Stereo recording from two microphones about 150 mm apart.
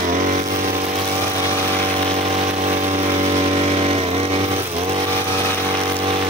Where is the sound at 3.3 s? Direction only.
40° right (ahead or behind).